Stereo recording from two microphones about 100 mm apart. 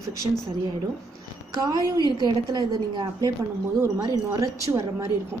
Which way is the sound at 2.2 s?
45° right (ahead or behind).